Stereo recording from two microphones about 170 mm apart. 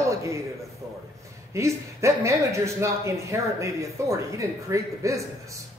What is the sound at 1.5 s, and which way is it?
Speech, 15° right (ahead or behind).